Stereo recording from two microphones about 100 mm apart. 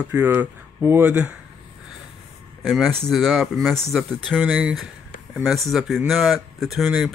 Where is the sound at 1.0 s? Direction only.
15° right (ahead or behind).